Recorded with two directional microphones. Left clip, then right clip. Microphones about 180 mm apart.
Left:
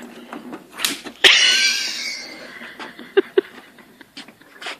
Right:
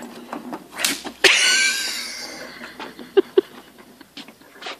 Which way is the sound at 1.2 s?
20° right (ahead or behind).